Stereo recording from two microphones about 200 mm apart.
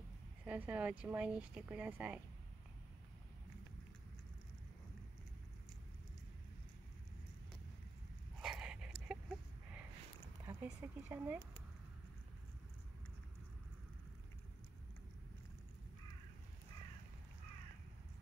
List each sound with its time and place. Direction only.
0.5 s speech: 5° right (ahead or behind)
8.4 s dog: 5° right (ahead or behind)
10.4 s speech: 10° right (ahead or behind)